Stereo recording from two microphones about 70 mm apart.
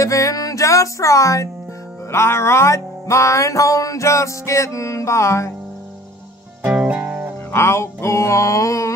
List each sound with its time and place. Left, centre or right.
0.0 s music: left
2.0 s music: left
6.7 s music: right
7.5 s music: left